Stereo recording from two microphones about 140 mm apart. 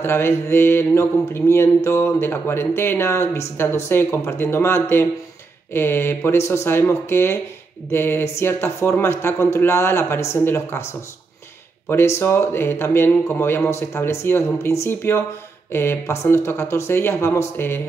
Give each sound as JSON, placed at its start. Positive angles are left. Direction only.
{"t": 0.0, "sound": "speech", "side_deg": 15}
{"t": 12.2, "sound": "speech", "side_deg": 15}